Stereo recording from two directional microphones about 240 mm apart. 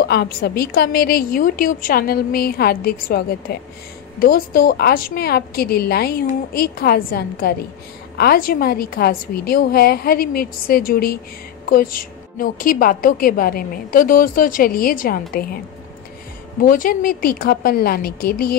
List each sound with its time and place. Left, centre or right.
0.0 s a woman's voice: left
16.6 s a woman's voice: left